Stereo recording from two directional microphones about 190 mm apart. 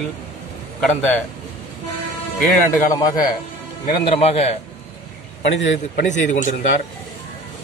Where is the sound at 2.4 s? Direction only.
15° left (ahead or behind).